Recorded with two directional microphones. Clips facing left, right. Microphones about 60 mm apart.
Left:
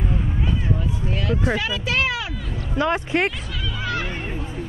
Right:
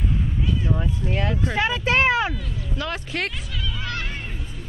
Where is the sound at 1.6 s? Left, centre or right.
Right.